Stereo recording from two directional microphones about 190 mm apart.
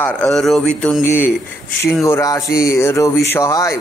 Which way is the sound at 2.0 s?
15° left (ahead or behind).